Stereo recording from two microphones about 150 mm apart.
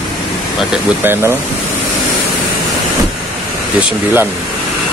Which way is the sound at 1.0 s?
15° right (ahead or behind).